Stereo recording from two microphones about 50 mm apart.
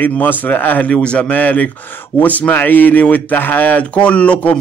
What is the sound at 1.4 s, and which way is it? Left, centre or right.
Speech, left.